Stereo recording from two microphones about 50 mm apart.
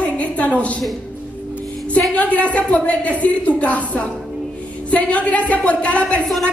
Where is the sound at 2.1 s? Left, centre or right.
Left.